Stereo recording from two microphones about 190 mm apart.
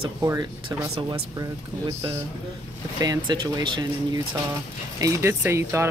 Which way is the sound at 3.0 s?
20° right (ahead or behind).